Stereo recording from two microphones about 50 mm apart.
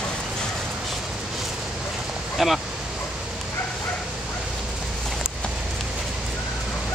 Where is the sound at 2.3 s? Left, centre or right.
Centre.